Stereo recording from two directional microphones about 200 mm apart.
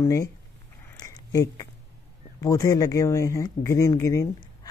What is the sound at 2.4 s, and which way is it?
Speech, 15° left (ahead or behind).